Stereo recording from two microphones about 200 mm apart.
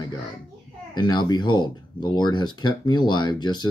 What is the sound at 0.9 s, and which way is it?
Speech, 20° left (ahead or behind).